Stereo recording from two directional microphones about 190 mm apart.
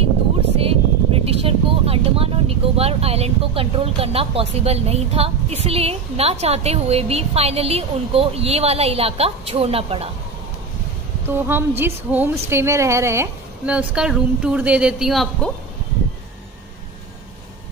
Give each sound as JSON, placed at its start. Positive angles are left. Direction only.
{"t": 0.6, "sound": "vehicle", "side_deg": -30}
{"t": 5.6, "sound": "a woman's voice", "side_deg": -35}
{"t": 11.2, "sound": "a woman's voice", "side_deg": -10}